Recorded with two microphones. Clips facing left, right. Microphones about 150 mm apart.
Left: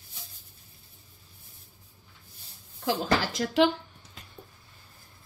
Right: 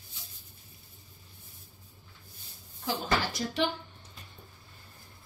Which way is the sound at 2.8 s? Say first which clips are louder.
Left 4 dB; 90° left.